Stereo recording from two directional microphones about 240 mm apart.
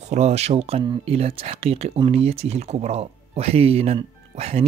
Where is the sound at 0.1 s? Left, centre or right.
Right.